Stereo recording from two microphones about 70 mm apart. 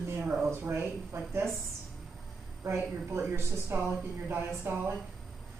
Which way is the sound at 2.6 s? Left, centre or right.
Right.